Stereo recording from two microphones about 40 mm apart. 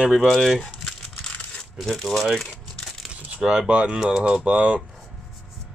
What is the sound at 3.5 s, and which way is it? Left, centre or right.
Speech, right.